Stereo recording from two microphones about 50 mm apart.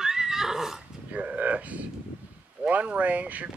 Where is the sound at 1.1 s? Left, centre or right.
Right.